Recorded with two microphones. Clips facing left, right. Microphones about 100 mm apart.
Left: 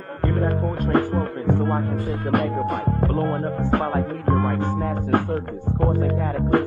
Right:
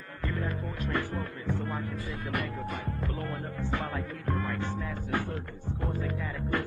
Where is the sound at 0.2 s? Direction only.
55° left (ahead or behind).